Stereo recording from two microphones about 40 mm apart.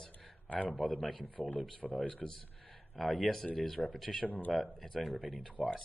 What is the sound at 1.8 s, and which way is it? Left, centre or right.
Speech, centre.